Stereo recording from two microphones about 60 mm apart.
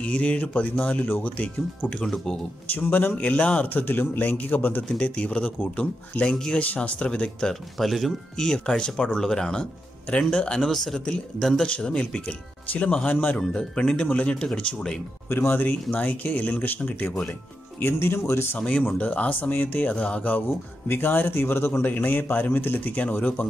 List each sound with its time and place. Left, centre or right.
0.0 s speech: left
3.6 s speech: left
4.9 s speech: centre
6.2 s speech: centre
6.6 s speech: left
7.8 s speech: centre
10.7 s speech: centre
11.6 s speech: centre
13.4 s speech: centre
15.2 s speech: left
15.9 s speech: left
18.6 s speech: centre
20.9 s speech: left
21.9 s speech: left